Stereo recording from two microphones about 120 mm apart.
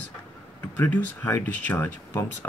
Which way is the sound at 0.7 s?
15° left (ahead or behind).